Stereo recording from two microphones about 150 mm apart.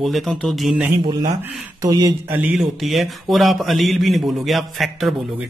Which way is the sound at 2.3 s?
5° right (ahead or behind).